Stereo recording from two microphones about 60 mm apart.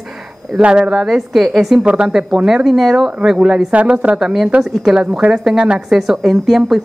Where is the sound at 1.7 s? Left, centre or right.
Centre.